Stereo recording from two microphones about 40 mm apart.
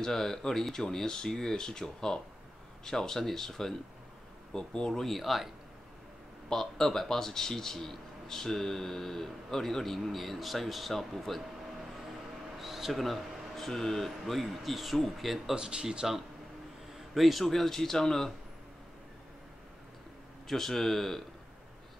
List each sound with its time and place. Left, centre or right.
0.0 s speech: centre
5.0 s speech: centre
6.5 s speech: centre
12.5 s speech: centre
15.5 s speech: centre
17.1 s speech: centre
20.4 s speech: centre